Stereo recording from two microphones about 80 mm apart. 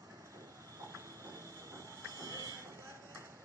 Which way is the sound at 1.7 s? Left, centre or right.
Right.